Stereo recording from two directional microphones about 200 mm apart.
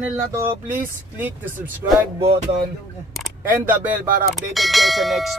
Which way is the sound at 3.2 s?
10° right (ahead or behind).